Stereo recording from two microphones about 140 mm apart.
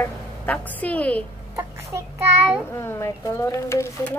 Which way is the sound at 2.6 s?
20° left (ahead or behind).